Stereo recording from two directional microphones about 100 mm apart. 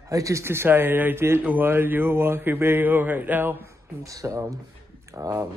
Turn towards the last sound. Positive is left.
turn(degrees=-35)  # may be behind; listen again after turning